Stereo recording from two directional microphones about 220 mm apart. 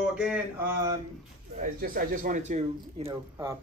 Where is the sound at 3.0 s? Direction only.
15° right (ahead or behind).